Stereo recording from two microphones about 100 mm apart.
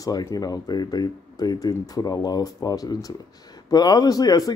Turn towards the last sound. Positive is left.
turn(degrees=40)  # may be behind; listen again after turning